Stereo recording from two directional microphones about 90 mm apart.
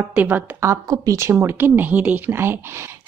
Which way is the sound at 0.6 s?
35° right (ahead or behind).